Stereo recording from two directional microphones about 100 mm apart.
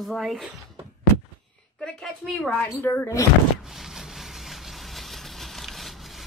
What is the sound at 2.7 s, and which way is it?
Speech, 25° left (ahead or behind).